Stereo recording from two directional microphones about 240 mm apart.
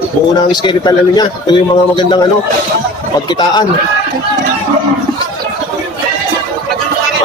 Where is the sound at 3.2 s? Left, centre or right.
Centre.